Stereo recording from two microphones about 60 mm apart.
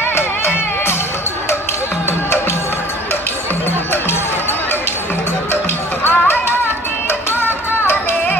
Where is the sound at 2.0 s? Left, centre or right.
Left.